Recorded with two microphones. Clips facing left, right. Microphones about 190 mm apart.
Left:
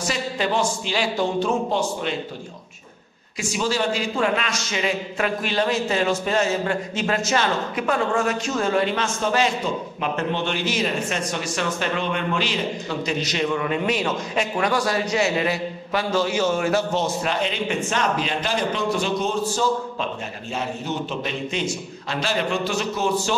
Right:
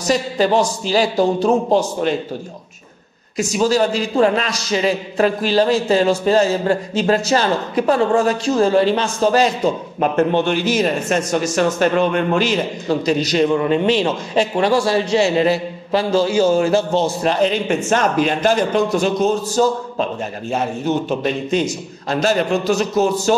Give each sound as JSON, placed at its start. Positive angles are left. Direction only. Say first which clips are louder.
{"t": 0.0, "sound": "speech", "louder": "right 8 dB", "side_deg": -40}
{"t": 3.3, "sound": "speech", "louder": "right 8 dB", "side_deg": -40}
{"t": 9.9, "sound": "a man's voice", "louder": "right 11 dB", "side_deg": -45}